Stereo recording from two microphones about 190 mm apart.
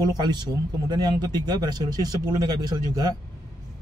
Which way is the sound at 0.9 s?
20° right (ahead or behind).